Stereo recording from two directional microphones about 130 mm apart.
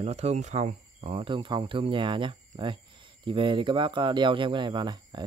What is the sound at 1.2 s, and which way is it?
Speech, 40° right (ahead or behind).